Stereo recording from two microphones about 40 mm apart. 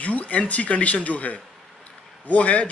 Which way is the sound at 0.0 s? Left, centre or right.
Left.